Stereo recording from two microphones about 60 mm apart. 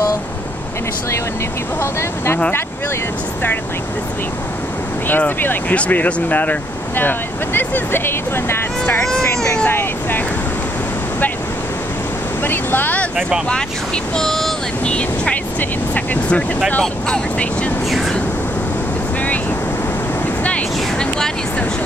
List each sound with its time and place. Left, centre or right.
1.8 s speech: left
5.0 s speech: left
9.0 s speech: centre
9.7 s speech: left
12.4 s speech: left
14.1 s speech: centre
14.9 s speech: centre
17.8 s speech: centre
20.4 s vehicle: left